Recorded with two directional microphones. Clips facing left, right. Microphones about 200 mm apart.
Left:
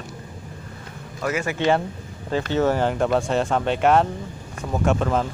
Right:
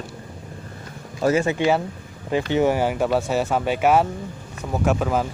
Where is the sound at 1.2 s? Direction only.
30° right (ahead or behind).